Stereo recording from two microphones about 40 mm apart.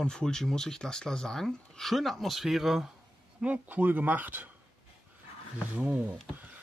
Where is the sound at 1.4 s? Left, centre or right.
Centre.